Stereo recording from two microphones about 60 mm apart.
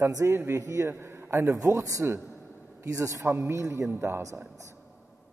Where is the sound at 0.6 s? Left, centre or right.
Right.